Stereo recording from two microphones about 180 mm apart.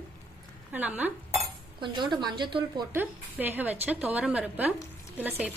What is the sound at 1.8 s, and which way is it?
A woman's voice, 25° right (ahead or behind).